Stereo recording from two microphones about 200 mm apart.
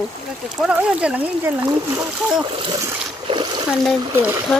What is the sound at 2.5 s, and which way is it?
Speech, 25° right (ahead or behind).